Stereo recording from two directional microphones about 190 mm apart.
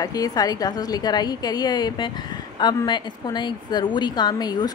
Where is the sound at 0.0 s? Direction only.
20° left (ahead or behind).